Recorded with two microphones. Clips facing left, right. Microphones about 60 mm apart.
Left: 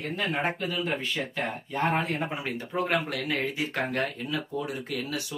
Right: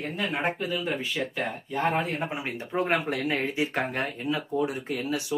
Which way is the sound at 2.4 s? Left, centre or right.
Right.